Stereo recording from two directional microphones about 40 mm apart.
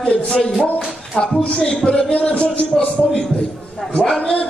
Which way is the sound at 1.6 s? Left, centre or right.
Left.